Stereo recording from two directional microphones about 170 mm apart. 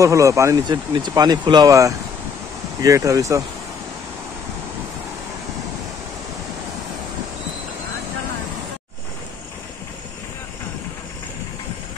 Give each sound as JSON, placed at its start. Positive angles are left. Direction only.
{"t": 0.0, "sound": "speech", "side_deg": -20}